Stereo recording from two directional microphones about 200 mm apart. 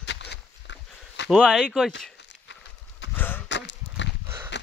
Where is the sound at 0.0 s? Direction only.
60° left (ahead or behind).